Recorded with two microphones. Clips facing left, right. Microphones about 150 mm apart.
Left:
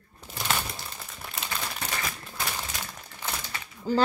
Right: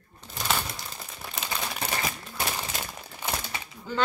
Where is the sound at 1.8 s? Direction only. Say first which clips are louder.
Right 3 dB; 25° right (ahead or behind).